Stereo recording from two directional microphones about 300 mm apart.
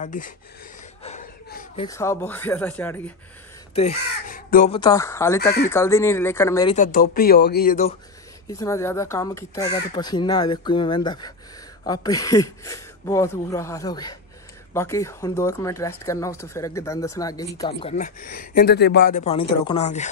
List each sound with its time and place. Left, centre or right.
0.0 s speech: left
1.0 s a sound: left
1.9 s speech: centre
3.7 s speech: left
4.7 s speech: centre
6.7 s speech: left
8.5 s speech: centre